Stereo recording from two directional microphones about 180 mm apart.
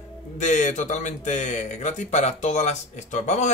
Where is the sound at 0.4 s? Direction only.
40° left (ahead or behind).